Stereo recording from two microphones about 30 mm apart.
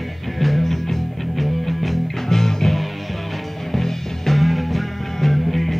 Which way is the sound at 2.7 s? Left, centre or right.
Centre.